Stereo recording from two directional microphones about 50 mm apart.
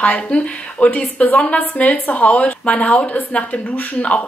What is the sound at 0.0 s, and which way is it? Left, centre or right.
A woman's voice, left.